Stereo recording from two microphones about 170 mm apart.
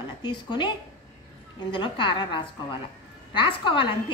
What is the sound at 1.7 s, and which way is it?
A woman's voice, 30° left (ahead or behind).